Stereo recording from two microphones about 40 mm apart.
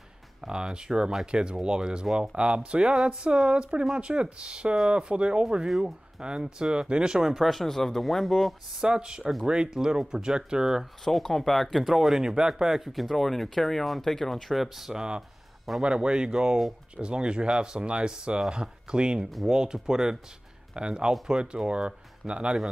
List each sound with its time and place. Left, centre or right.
0.4 s speech: centre
7.3 s speech: centre
8.8 s speech: centre
11.1 s speech: centre
11.9 s speech: centre
15.0 s speech: right